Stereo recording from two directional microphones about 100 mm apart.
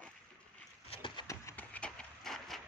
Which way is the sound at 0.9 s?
55° left (ahead or behind).